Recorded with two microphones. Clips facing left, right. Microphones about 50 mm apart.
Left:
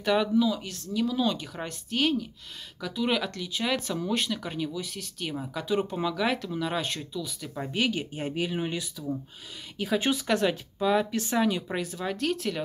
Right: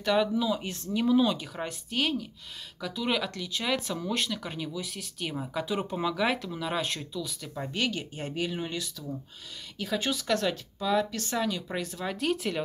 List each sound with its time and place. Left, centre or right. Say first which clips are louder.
0.0 s speech: even; centre
0.3 s speech: left 4 dB; centre
0.6 s speech: even; right
1.2 s speech: right 1 dB; centre
11.6 s speech: left 2 dB; centre